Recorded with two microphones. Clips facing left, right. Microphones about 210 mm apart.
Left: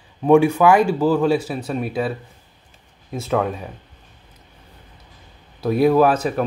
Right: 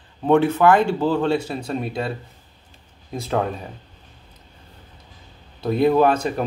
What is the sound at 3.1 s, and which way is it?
Speech, centre (ahead or behind).